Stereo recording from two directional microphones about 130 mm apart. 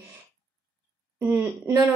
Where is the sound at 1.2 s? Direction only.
15° right (ahead or behind).